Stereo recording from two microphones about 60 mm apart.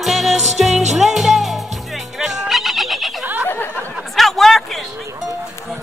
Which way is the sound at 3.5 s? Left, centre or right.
Left.